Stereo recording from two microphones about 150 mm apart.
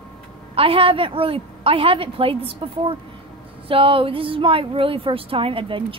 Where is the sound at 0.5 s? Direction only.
40° right (ahead or behind).